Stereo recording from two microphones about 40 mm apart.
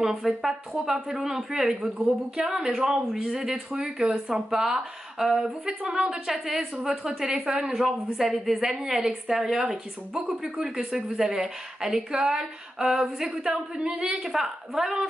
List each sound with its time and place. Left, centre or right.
0.2 s speech: centre
2.3 s speech: right
5.7 s speech: right
6.1 s speech: centre; by 14.2 s right
14.2 s speech: centre